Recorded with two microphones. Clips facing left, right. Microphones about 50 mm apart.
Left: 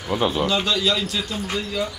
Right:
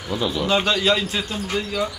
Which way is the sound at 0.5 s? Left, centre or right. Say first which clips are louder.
Right 2 dB; right.